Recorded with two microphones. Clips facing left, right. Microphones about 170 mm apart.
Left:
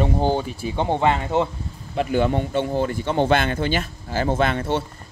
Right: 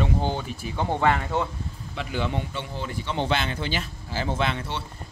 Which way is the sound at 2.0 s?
50° left (ahead or behind).